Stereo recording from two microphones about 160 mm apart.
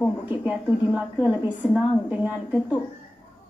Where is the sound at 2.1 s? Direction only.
10° right (ahead or behind).